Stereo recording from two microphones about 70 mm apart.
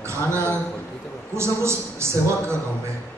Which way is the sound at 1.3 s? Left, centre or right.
Right.